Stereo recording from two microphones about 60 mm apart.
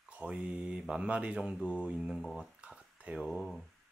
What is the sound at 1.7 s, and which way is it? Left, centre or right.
Mantra, centre.